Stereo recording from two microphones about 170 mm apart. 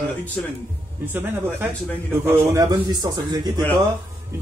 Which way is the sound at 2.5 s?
20° right (ahead or behind).